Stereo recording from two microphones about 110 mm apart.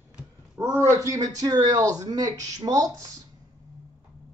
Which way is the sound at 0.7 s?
30° right (ahead or behind).